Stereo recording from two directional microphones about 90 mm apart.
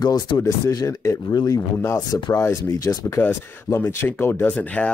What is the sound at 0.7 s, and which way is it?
Speech, 40° left (ahead or behind).